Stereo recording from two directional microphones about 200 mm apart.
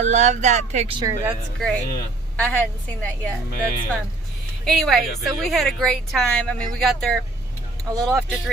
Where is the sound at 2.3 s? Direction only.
5° left (ahead or behind).